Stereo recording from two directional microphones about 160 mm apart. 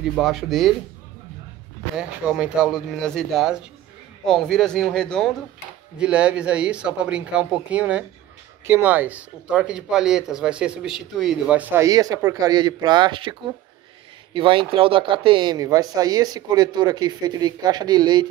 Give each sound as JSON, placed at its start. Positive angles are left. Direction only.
{"t": 0.1, "sound": "speech", "side_deg": 0}
{"t": 2.0, "sound": "speech", "side_deg": -5}
{"t": 5.9, "sound": "speech", "side_deg": -5}